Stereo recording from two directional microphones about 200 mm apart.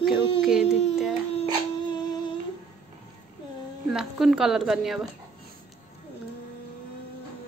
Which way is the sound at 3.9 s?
Centre (ahead or behind).